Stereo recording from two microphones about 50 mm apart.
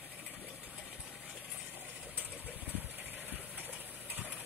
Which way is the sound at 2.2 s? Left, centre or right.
Right.